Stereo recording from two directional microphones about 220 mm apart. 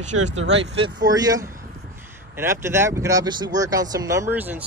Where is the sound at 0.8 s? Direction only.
15° right (ahead or behind).